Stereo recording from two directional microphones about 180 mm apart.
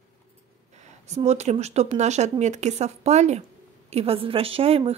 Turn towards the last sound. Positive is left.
turn(degrees=-35)  # may be behind; listen again after turning